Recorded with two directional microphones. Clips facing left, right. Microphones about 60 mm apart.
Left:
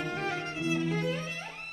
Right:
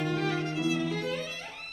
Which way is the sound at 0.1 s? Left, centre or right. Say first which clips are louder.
Right 4 dB; left.